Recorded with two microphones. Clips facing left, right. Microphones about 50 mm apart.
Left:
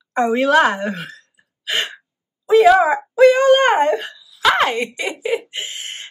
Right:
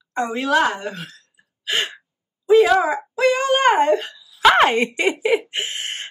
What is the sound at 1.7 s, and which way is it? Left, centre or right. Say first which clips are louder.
Speech: left 1 dB; centre.